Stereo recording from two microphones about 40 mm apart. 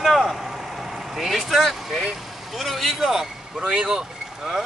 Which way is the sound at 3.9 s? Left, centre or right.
Centre.